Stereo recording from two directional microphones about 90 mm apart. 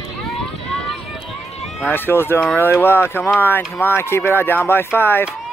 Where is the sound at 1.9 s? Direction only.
25° left (ahead or behind).